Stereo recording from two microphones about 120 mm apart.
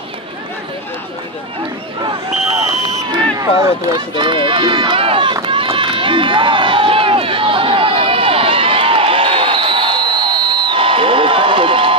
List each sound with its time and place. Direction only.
3.1 s run: 30° right (ahead or behind); by 12.0 s 50° right (ahead or behind)